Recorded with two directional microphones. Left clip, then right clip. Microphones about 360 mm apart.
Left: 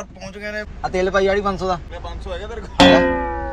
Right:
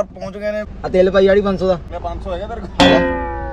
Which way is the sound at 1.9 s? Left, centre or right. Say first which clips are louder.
Right 6 dB; right.